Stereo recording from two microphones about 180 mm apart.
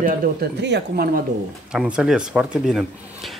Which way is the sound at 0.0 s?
65° right (ahead or behind).